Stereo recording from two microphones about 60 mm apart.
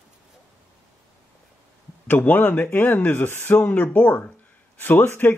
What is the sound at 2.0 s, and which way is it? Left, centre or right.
A man's voice, left.